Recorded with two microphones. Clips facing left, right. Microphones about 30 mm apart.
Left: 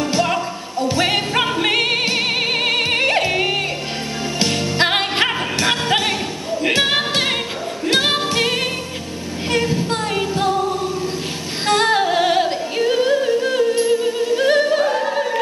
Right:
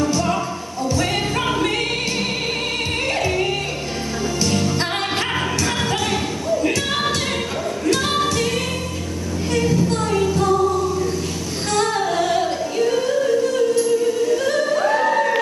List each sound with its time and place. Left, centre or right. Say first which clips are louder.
0.0 s music: left 1 dB; left
6.6 s a sound: left 7 dB; left
7.8 s music: left 2 dB; left
11.7 s yodeling: left 4 dB; left